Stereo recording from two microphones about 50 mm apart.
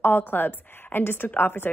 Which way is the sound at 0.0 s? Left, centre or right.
Left.